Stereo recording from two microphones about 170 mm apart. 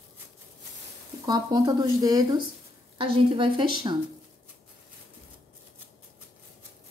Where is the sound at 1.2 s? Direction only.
25° right (ahead or behind).